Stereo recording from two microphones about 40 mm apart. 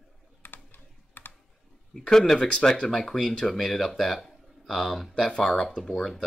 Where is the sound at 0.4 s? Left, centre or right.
Left.